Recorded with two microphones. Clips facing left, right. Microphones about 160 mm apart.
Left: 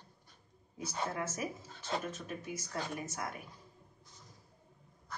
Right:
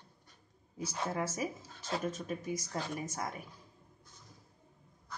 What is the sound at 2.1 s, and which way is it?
Speech, 35° right (ahead or behind).